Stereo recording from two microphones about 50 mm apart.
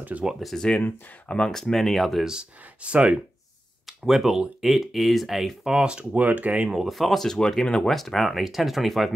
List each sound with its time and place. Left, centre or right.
0.2 s speech: centre
0.6 s speech: centre
2.8 s speech: right
3.8 s speech: centre
5.8 s speech: centre
6.1 s speech: right
6.7 s speech: centre